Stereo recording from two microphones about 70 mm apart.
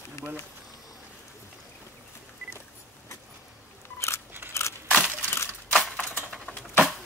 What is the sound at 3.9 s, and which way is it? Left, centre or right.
Scissors, left.